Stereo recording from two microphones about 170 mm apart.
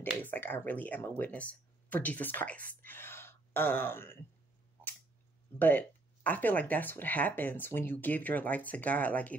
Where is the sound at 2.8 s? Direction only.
10° left (ahead or behind).